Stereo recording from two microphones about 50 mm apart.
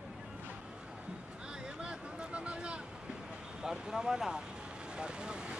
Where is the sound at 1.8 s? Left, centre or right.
Centre.